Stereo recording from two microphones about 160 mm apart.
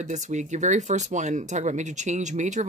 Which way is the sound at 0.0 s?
50° right (ahead or behind).